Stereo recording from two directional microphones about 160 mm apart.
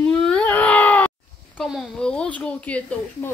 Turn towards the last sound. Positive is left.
turn(degrees=10)  # may be behind; listen again after turning